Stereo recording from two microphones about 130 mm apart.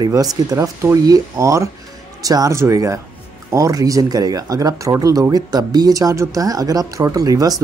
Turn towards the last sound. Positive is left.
turn(degrees=-30)  # may be behind; listen again after turning